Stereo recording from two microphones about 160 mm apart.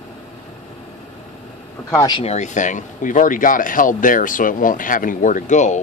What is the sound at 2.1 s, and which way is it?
Speech, 45° left (ahead or behind).